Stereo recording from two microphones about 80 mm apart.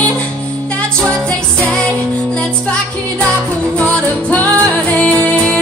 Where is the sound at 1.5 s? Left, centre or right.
Centre.